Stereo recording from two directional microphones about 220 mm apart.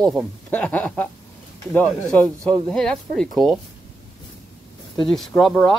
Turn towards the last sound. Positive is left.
turn(degrees=5)  # may be behind; listen again after turning